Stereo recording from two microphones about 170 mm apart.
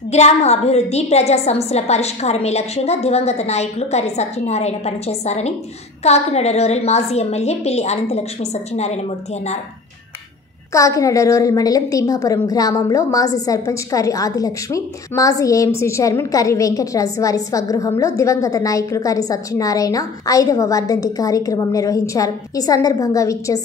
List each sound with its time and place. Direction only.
0.1 s a woman's voice: 40° left (ahead or behind)
10.7 s a woman's voice: 20° left (ahead or behind)